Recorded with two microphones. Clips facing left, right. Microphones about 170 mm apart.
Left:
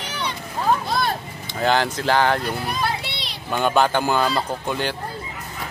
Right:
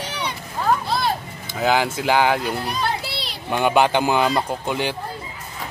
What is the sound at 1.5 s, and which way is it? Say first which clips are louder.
Speech: right 1 dB; 5° right (ahead or behind).